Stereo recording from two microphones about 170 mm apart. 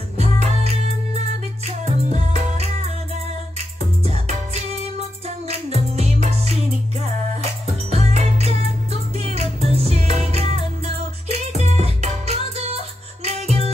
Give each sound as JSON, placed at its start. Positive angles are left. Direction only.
{"t": 0.2, "sound": "music", "side_deg": -40}
{"t": 5.9, "sound": "music", "side_deg": -40}